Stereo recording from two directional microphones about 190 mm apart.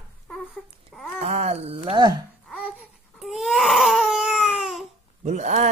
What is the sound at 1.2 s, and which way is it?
Speech, 35° right (ahead or behind).